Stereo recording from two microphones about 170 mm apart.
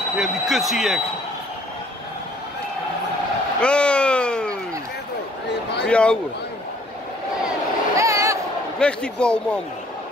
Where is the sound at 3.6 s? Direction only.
5° left (ahead or behind).